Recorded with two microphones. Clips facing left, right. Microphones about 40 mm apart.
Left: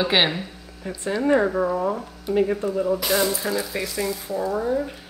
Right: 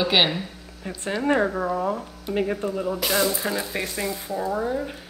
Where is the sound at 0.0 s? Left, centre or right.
Centre.